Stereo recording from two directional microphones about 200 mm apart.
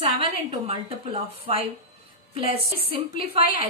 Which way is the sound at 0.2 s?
30° right (ahead or behind).